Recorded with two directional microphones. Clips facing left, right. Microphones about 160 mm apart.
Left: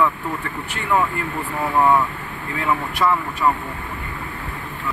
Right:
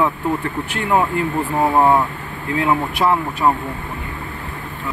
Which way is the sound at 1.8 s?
30° right (ahead or behind).